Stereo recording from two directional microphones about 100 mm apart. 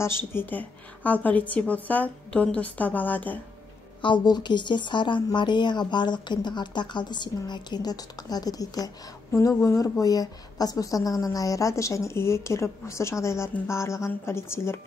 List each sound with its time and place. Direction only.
0.0 s a woman's voice: 25° left (ahead or behind)
4.0 s a woman's voice: 50° left (ahead or behind); by 14.8 s 25° left (ahead or behind)